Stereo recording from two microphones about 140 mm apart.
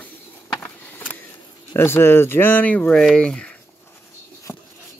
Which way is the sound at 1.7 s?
15° left (ahead or behind).